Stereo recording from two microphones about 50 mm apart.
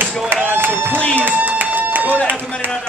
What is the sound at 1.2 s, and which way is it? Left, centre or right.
Run, right.